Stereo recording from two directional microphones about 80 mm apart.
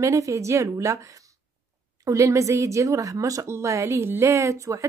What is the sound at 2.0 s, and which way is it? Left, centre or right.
Speech, right.